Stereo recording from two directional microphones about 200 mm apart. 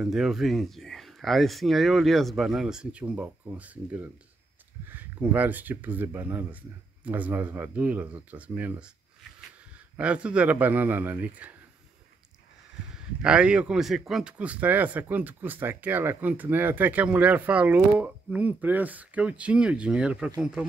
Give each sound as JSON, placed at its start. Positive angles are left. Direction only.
{"t": 0.0, "sound": "speech", "side_deg": 0}
{"t": 9.9, "sound": "speech", "side_deg": -5}
{"t": 13.2, "sound": "speech", "side_deg": -5}